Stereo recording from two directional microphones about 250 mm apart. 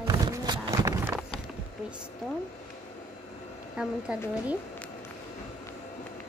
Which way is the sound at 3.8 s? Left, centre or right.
Centre.